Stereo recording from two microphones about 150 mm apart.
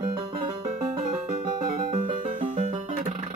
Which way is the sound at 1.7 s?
65° right (ahead or behind).